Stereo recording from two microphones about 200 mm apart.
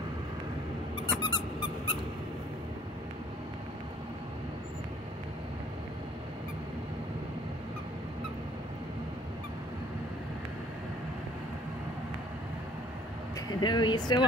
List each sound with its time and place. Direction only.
1.0 s squeak: 25° left (ahead or behind)
13.6 s speech: 20° left (ahead or behind)